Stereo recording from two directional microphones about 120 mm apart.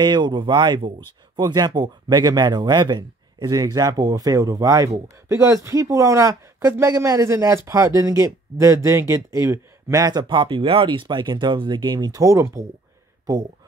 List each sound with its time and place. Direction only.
0.0 s speech: 40° right (ahead or behind)